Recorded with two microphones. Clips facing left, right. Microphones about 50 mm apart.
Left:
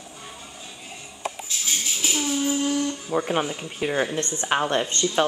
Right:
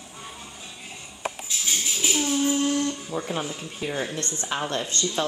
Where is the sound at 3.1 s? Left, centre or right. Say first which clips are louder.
Left 5 dB; left.